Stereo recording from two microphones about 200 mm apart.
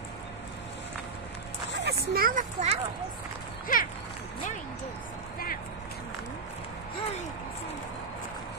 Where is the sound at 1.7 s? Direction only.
60° right (ahead or behind); by 2.8 s 40° right (ahead or behind).